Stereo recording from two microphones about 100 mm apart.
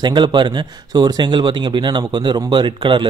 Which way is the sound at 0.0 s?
50° right (ahead or behind).